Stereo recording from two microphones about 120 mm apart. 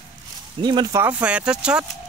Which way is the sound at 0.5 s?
40° right (ahead or behind).